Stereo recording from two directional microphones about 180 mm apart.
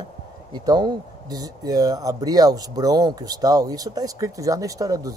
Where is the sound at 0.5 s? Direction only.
25° right (ahead or behind).